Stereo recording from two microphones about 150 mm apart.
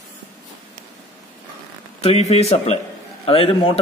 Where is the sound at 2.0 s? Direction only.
40° left (ahead or behind).